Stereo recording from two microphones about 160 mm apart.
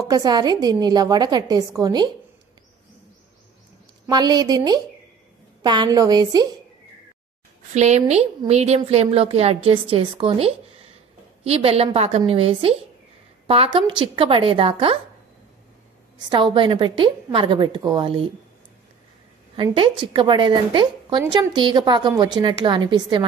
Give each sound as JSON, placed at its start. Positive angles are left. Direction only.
{"t": 0.1, "sound": "a woman's voice", "side_deg": -25}
{"t": 4.1, "sound": "a woman's voice", "side_deg": -25}
{"t": 7.7, "sound": "a woman's voice", "side_deg": -45}
{"t": 16.2, "sound": "a woman's voice", "side_deg": -30}
{"t": 19.5, "sound": "a woman's voice", "side_deg": -35}